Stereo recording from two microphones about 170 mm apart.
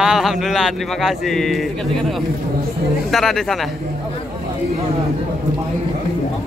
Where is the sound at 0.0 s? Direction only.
5° right (ahead or behind).